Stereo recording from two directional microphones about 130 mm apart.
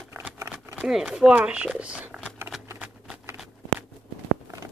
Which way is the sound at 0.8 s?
5° right (ahead or behind).